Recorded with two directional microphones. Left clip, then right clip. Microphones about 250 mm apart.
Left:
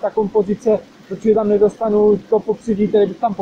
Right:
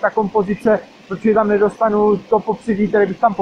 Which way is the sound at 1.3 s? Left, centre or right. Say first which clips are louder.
Left 1 dB; right.